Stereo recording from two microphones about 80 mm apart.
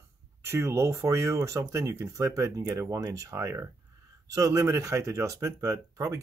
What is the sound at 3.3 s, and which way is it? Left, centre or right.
Speech, right.